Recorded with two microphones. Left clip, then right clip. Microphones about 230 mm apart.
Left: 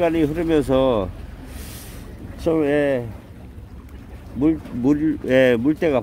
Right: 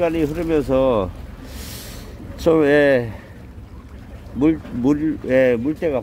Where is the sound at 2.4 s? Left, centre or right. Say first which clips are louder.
Right 5 dB; centre.